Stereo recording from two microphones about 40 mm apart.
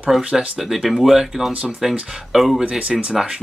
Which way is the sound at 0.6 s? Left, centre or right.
Centre.